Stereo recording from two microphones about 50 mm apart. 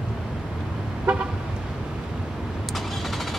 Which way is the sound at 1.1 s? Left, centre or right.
Right.